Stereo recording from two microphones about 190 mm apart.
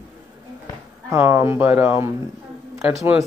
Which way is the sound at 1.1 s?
10° right (ahead or behind).